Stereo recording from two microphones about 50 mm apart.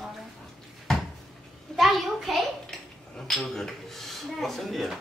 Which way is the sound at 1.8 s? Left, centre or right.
Centre.